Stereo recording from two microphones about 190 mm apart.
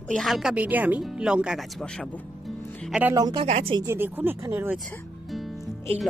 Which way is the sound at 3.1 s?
20° right (ahead or behind).